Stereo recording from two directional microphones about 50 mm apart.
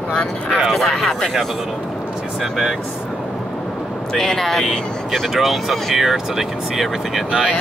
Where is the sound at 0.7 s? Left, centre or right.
Centre.